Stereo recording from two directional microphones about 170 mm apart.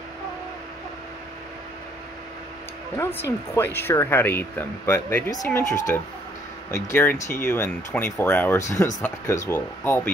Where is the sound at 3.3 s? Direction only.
15° left (ahead or behind).